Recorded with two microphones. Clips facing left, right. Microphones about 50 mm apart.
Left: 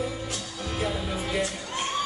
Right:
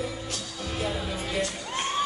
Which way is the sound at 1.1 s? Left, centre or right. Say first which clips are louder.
Left 1 dB; centre.